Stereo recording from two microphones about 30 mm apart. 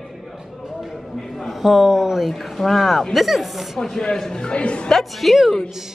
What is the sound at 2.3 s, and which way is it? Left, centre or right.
Speech, centre.